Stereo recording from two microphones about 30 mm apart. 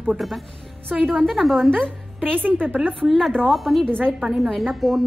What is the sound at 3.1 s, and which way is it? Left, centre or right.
Speech, centre.